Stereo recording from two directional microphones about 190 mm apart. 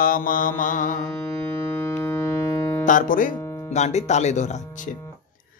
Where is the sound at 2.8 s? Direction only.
45° left (ahead or behind).